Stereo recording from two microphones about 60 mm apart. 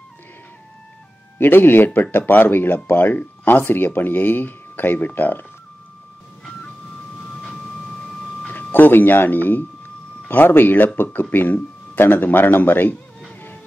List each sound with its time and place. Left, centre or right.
1.4 s speech: left
8.5 s speech: left